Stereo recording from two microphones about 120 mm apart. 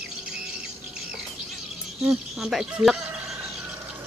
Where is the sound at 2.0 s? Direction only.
5° right (ahead or behind).